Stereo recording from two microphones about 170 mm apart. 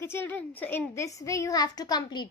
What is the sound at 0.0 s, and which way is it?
A woman's voice, 10° left (ahead or behind).